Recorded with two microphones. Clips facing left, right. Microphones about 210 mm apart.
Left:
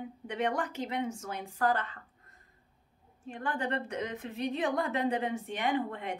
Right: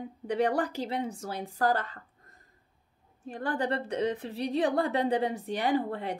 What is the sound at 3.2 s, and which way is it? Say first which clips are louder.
A woman's voice: right 4 dB; 35° right (ahead or behind).